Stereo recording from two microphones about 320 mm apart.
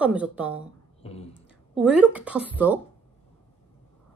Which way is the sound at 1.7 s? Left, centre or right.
Centre.